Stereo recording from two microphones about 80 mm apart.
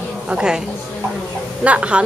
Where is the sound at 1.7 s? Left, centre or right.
Centre.